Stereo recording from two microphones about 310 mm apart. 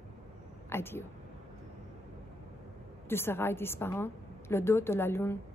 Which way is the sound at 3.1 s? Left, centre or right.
Centre.